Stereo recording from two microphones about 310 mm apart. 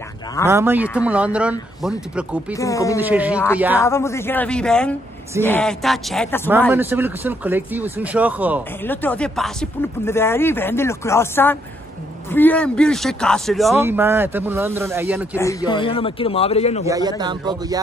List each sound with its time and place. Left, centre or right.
0.5 s speech: centre
2.5 s speech: centre
3.0 s speech: centre
3.8 s speech: centre
6.7 s speech: centre
8.8 s speech: centre
15.3 s speech: centre
16.8 s speech: centre